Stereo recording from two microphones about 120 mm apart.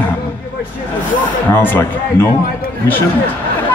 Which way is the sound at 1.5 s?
20° left (ahead or behind).